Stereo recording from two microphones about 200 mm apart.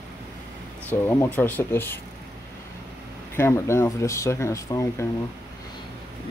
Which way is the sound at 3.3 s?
10° left (ahead or behind).